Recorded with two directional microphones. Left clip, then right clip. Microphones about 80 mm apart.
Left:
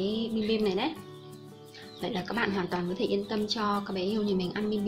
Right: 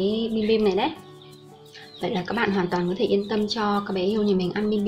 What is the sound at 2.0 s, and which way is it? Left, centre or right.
A woman's voice, centre.